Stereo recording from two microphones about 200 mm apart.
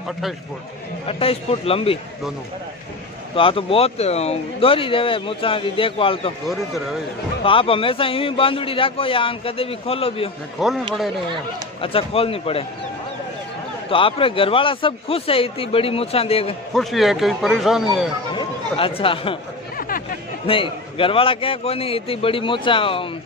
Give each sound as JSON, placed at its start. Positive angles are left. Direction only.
{"t": 1.0, "sound": "speech", "side_deg": 30}
{"t": 3.3, "sound": "speech", "side_deg": 25}
{"t": 6.4, "sound": "speech", "side_deg": 0}
{"t": 7.4, "sound": "speech", "side_deg": 25}
{"t": 10.6, "sound": "speech", "side_deg": 0}
{"t": 11.8, "sound": "speech", "side_deg": 30}
{"t": 13.8, "sound": "speech", "side_deg": 25}
{"t": 16.7, "sound": "speech", "side_deg": 0}
{"t": 18.3, "sound": "speech", "side_deg": 25}
{"t": 20.4, "sound": "speech", "side_deg": 25}